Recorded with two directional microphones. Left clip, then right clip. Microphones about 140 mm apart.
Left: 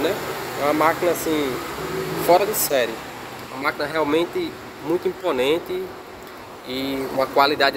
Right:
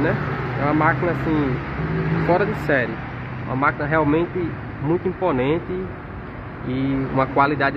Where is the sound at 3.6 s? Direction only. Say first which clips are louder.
Right 3 dB; 40° left (ahead or behind).